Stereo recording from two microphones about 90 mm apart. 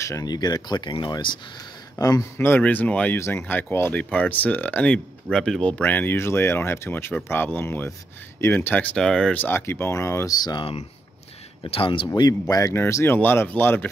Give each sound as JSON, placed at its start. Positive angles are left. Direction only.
{"t": 0.2, "sound": "speech", "side_deg": 45}
{"t": 2.0, "sound": "a man's voice", "side_deg": 45}
{"t": 2.3, "sound": "speech", "side_deg": 25}
{"t": 3.2, "sound": "speech", "side_deg": 30}
{"t": 8.9, "sound": "speech", "side_deg": 5}
{"t": 9.4, "sound": "speech", "side_deg": 25}
{"t": 10.3, "sound": "speech", "side_deg": 45}
{"t": 11.7, "sound": "speech", "side_deg": 75}
{"t": 12.2, "sound": "speech", "side_deg": 45}
{"t": 12.7, "sound": "speech", "side_deg": 30}